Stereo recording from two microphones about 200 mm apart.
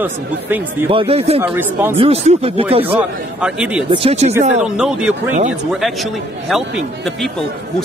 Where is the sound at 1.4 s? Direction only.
10° right (ahead or behind).